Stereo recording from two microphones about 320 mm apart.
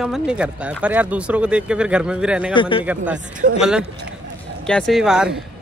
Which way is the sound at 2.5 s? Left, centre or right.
Centre.